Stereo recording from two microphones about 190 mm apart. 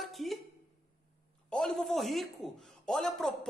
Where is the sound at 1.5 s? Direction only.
Centre (ahead or behind).